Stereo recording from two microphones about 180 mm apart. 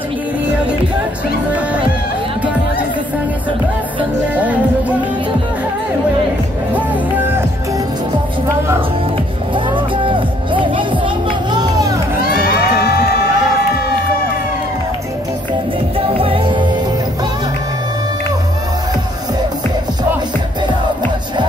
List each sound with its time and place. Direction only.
4.4 s music: 10° right (ahead or behind)
6.7 s music: 10° right (ahead or behind)
9.7 s music: 25° right (ahead or behind)
12.3 s crowd: 60° left (ahead or behind)
16.2 s music: 30° right (ahead or behind)